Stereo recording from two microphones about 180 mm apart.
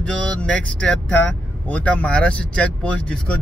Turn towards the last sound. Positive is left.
turn(degrees=5)  # may be behind; listen again after turning